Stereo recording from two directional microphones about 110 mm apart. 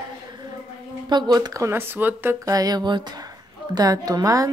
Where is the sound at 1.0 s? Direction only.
40° right (ahead or behind); by 2.3 s 20° right (ahead or behind).